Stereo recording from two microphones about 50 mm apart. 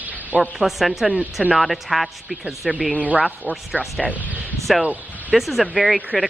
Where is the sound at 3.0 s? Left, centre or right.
Right.